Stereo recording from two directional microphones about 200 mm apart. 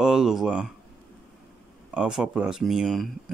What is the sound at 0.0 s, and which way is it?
Speech, 5° right (ahead or behind).